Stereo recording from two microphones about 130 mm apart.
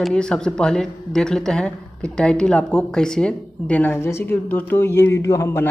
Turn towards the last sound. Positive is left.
turn(degrees=20)  # may be behind; listen again after turning